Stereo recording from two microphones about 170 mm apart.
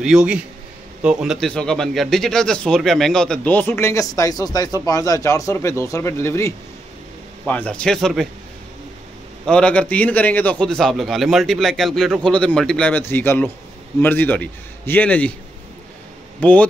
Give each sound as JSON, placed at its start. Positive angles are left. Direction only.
{"t": 0.0, "sound": "a man's voice", "side_deg": -5}
{"t": 9.5, "sound": "a man's voice", "side_deg": 5}
{"t": 16.3, "sound": "speech", "side_deg": 10}